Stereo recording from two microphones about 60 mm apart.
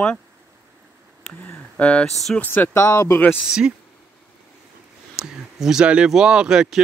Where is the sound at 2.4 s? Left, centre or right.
Left.